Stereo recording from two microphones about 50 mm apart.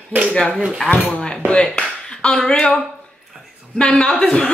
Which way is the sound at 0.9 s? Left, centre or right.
Right.